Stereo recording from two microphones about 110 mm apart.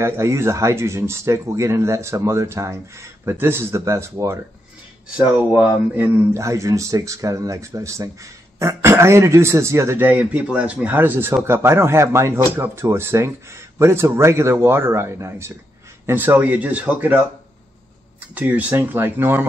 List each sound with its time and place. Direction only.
0.0 s speech: 25° right (ahead or behind)
18.3 s speech: 15° right (ahead or behind)